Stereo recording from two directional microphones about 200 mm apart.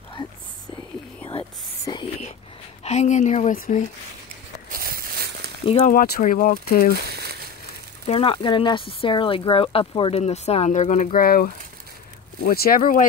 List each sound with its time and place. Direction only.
0.2 s speech: 25° left (ahead or behind)
1.9 s whispering: 20° left (ahead or behind)
2.8 s speech: 35° left (ahead or behind)
4.6 s a sound: 45° right (ahead or behind)
5.9 s speech: 45° left (ahead or behind)
7.1 s crumpling: 55° right (ahead or behind)
8.1 s speech: 25° left (ahead or behind); by 13.0 s 45° left (ahead or behind)